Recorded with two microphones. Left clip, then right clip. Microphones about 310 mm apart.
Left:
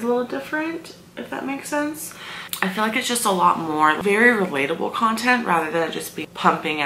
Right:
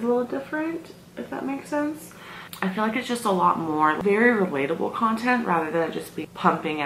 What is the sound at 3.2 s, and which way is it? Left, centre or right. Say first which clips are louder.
Speech: left 2 dB; right.